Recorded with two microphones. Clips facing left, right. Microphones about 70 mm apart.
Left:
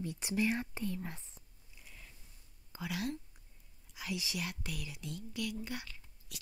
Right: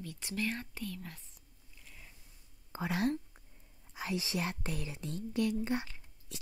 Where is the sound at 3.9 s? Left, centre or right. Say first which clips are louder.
Right 4 dB; right.